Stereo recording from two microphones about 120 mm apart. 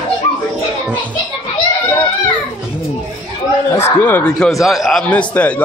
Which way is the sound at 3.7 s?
15° left (ahead or behind).